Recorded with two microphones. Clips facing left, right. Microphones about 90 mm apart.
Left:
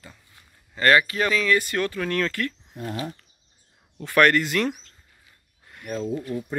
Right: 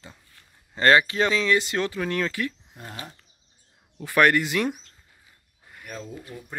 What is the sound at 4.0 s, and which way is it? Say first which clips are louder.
Speech: left 1 dB; 15° right (ahead or behind).